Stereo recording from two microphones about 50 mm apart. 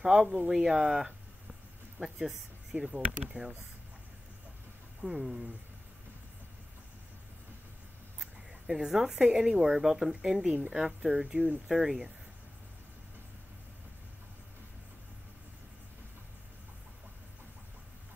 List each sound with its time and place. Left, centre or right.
0.0 s speech: centre
5.0 s speech: centre
8.2 s speech: centre